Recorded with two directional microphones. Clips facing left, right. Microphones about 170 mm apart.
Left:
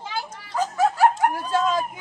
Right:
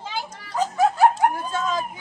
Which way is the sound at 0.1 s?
15° right (ahead or behind).